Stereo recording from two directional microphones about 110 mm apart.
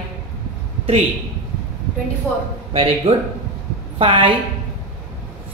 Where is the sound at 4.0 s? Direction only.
50° right (ahead or behind).